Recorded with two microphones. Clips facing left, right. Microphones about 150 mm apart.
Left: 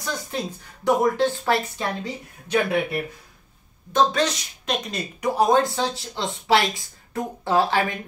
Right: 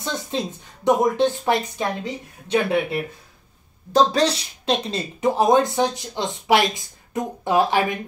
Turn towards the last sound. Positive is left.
turn(degrees=-20)  # may be behind; listen again after turning